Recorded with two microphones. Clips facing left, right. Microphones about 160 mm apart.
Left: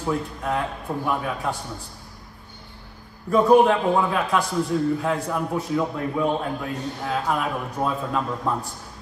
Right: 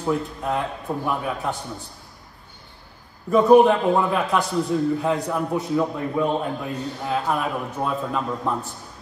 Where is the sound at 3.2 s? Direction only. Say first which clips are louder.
Right 2 dB; centre (ahead or behind).